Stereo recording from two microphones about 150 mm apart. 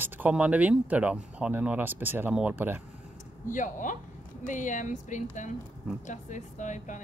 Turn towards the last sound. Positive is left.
turn(degrees=55)  # may be behind; listen again after turning